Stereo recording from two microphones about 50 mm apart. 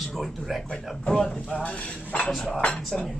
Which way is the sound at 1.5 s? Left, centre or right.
Left.